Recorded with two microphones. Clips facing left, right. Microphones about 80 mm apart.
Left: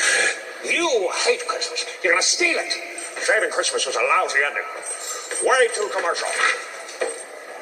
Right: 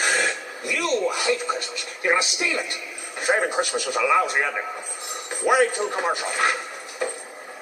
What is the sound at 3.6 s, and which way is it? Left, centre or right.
Speech, left.